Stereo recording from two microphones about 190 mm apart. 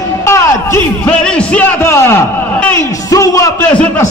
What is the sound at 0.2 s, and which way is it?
A man's voice, 15° left (ahead or behind).